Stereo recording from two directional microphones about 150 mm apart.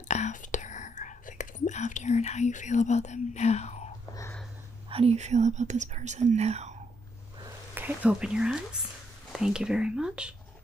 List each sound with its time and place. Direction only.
0.1 s whispering: 55° left (ahead or behind)
4.8 s speech: 40° right (ahead or behind)
7.7 s speech: 10° right (ahead or behind)